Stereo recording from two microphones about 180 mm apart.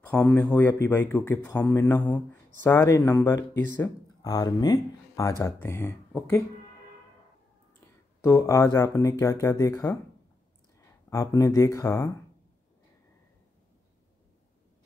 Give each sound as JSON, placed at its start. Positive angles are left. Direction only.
{"t": 0.0, "sound": "speech", "side_deg": 10}
{"t": 8.2, "sound": "speech", "side_deg": 15}
{"t": 11.1, "sound": "speech", "side_deg": 15}